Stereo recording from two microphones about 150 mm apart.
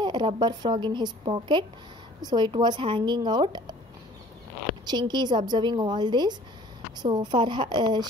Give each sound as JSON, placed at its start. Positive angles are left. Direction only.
{"t": 0.0, "sound": "a sound", "side_deg": -30}
{"t": 0.4, "sound": "a woman's voice", "side_deg": -30}
{"t": 4.8, "sound": "a woman's voice", "side_deg": -30}